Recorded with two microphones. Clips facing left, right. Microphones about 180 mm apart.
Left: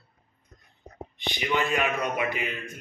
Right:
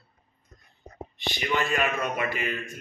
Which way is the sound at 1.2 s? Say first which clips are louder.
Left 1 dB; 15° left (ahead or behind).